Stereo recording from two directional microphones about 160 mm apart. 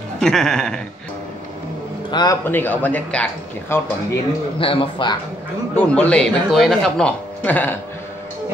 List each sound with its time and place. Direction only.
0.2 s music: 5° left (ahead or behind)
2.0 s a man's voice: 25° left (ahead or behind)
2.4 s speech: 10° left (ahead or behind)
4.6 s speech: 35° left (ahead or behind)
5.8 s speech: 10° left (ahead or behind)